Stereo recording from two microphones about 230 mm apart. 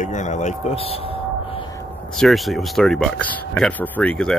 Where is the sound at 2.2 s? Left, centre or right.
Centre.